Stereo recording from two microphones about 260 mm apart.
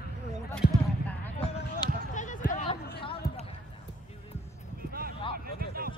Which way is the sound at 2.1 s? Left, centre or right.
Left.